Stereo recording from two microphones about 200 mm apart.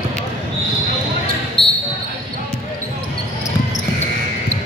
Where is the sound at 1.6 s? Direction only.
25° left (ahead or behind).